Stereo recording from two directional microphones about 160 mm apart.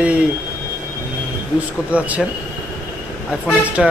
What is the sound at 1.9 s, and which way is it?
Speech, 10° right (ahead or behind).